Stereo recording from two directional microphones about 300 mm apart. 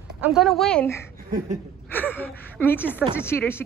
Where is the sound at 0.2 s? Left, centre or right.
Centre.